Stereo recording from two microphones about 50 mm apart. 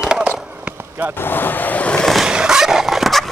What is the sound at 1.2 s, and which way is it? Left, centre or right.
Speech, left.